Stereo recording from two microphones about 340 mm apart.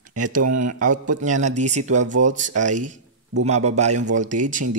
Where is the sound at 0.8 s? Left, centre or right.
Right.